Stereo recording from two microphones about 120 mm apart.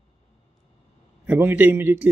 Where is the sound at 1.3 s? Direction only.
15° right (ahead or behind).